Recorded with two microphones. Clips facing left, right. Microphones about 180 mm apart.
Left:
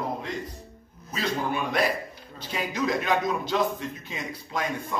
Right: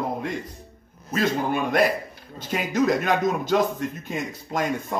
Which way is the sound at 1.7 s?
50° right (ahead or behind).